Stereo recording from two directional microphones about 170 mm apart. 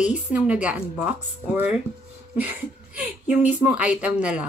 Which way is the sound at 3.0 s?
10° right (ahead or behind).